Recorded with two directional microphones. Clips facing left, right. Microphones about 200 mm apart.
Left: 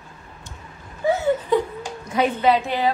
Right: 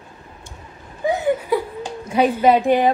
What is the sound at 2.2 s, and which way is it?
Speech, 45° right (ahead or behind).